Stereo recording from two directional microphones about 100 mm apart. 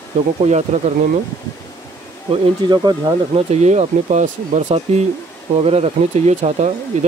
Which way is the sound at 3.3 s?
90° right.